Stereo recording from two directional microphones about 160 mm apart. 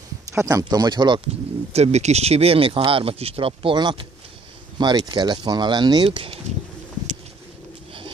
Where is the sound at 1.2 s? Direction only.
40° right (ahead or behind); by 6.1 s 25° right (ahead or behind).